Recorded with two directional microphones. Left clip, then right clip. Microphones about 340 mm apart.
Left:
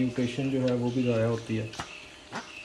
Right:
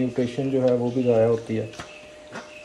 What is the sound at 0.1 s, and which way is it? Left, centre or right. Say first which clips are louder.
Speech: right 6 dB; centre.